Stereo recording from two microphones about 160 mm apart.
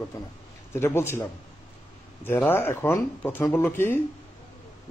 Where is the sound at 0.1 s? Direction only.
20° left (ahead or behind).